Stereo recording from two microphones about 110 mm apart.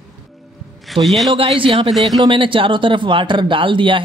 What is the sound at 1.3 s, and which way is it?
Speech, 55° right (ahead or behind).